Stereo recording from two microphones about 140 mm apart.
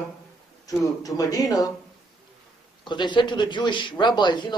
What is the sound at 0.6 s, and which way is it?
Speech, 25° left (ahead or behind).